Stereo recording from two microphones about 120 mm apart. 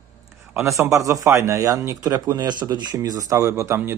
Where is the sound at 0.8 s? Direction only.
25° right (ahead or behind).